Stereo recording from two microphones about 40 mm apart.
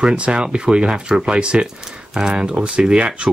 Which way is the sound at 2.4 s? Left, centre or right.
Right.